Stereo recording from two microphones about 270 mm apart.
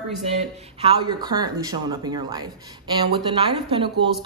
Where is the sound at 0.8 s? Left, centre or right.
Centre.